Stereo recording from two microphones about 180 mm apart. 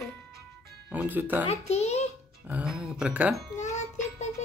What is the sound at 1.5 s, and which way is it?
Speech, 35° left (ahead or behind).